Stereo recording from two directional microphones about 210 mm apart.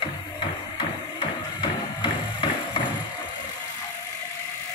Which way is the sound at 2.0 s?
25° left (ahead or behind).